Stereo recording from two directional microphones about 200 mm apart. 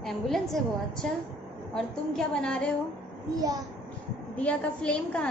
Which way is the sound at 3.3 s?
20° right (ahead or behind).